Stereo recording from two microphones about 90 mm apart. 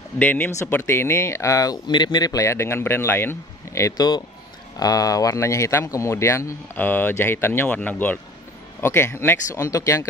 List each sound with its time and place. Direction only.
0.2 s speech: 20° left (ahead or behind); by 1.8 s 40° left (ahead or behind)
1.9 s speech: 60° left (ahead or behind)
2.4 s speech: 30° left (ahead or behind)
3.9 s a man's voice: 45° left (ahead or behind); by 9.4 s 25° left (ahead or behind)
9.5 s a man's voice: 35° left (ahead or behind)